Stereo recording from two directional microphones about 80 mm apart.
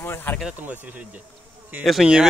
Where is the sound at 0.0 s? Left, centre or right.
Left.